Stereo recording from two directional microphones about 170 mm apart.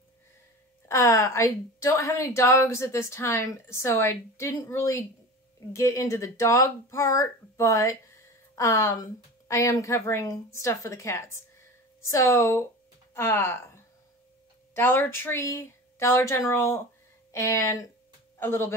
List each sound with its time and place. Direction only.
0.8 s speech: 15° left (ahead or behind)